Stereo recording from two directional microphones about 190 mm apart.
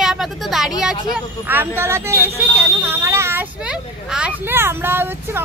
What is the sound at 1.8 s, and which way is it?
Speech, 15° right (ahead or behind).